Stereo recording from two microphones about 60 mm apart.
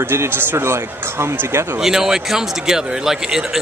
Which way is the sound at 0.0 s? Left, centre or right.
Right.